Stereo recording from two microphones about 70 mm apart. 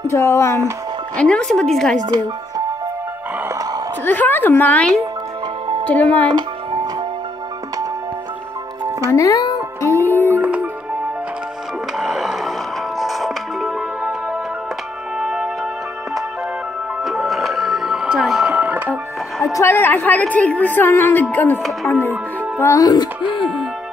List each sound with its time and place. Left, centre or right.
0.0 s speech: left
1.1 s speech: centre
2.0 s speech: right
4.0 s a woman's voice: left
9.1 s speech: left
9.8 s music: left
10.4 s music: right
12.0 s music: centre
15.1 s music: centre
17.0 s music: centre
18.5 s music: centre
19.6 s a woman's voice: left
22.8 s speech: left